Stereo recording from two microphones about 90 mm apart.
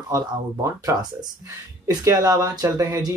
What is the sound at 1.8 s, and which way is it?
Speech, 45° right (ahead or behind).